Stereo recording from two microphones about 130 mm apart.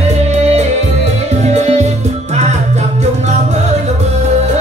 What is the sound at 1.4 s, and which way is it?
Music, 60° right (ahead or behind).